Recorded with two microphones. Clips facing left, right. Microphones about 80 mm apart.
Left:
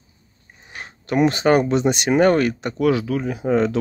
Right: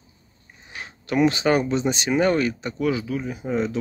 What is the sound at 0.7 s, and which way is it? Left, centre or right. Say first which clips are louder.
Speech: left 2 dB; left.